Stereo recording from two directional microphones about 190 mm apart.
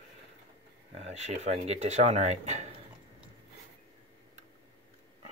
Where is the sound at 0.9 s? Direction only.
35° right (ahead or behind).